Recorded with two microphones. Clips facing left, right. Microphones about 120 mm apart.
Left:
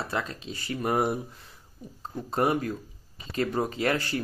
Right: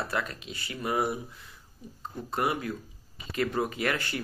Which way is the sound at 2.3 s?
40° left (ahead or behind).